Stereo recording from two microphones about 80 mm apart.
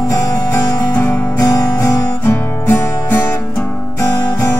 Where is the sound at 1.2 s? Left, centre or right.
Left.